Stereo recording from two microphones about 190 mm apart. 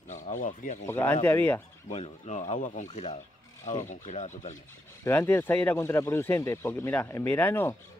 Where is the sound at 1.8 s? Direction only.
35° left (ahead or behind).